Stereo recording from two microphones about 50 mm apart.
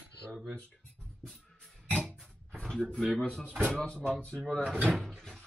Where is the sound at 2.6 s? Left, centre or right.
Centre.